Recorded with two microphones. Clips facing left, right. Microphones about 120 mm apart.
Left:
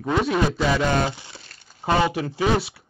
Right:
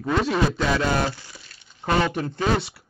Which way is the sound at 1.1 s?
20° left (ahead or behind).